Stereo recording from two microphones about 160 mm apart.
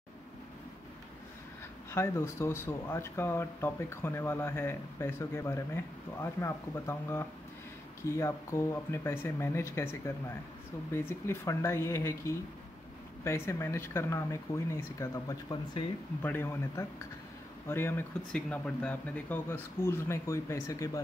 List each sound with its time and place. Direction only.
1.9 s speech: 15° left (ahead or behind)